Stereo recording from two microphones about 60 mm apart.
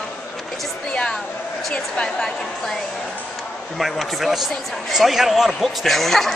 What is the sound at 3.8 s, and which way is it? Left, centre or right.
Speech, centre.